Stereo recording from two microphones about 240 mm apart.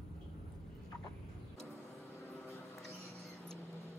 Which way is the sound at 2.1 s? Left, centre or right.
Centre.